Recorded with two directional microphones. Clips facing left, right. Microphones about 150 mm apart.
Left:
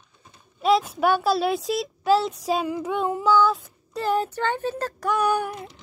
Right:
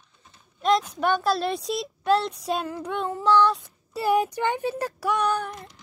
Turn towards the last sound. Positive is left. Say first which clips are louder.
# left 3 dB
turn(degrees=5)  # may be behind; listen again after turning